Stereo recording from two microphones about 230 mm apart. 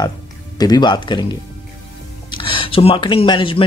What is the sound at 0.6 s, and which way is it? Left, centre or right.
Speech, centre.